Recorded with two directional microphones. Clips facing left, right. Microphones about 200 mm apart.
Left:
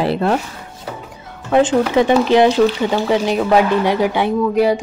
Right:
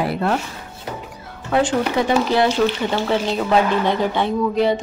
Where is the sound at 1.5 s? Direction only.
20° left (ahead or behind).